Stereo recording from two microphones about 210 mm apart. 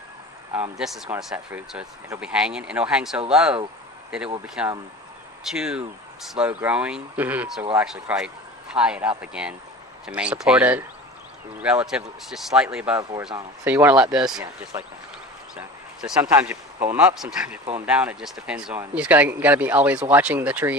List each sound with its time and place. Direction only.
0.5 s speech: 5° right (ahead or behind)
4.6 s speech: 5° right (ahead or behind)